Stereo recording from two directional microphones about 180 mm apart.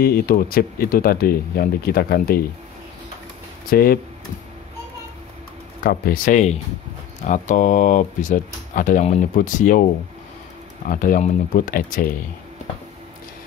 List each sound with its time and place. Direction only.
0.0 s speech: 55° left (ahead or behind)
3.7 s speech: 60° left (ahead or behind)
5.9 s speech: 50° left (ahead or behind)
10.9 s speech: 50° left (ahead or behind)